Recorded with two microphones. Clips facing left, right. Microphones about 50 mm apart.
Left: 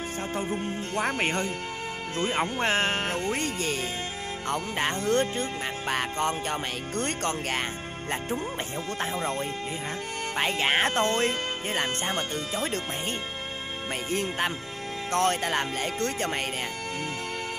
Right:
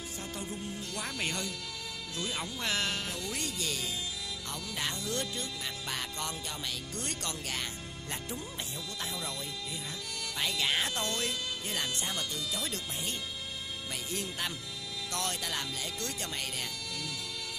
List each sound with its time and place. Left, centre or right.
0.3 s music: left
2.1 s speech: left
9.0 s speech: left
14.1 s speech: left
15.0 s music: left